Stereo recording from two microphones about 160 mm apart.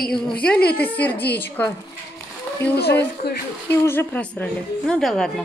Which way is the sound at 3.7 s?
15° left (ahead or behind).